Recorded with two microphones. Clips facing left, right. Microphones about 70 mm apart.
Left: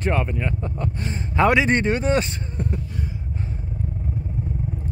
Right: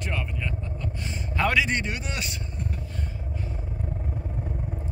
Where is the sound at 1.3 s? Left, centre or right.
Left.